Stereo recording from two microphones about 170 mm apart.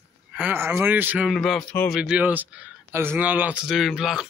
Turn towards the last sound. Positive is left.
turn(degrees=-5)  # may be behind; listen again after turning